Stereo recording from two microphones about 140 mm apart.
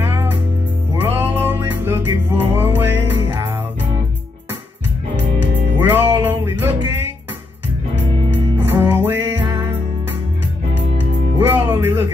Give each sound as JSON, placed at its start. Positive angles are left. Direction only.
{"t": 0.0, "sound": "music", "side_deg": -15}
{"t": 5.8, "sound": "music", "side_deg": -15}
{"t": 8.6, "sound": "music", "side_deg": -15}
{"t": 11.3, "sound": "music", "side_deg": -15}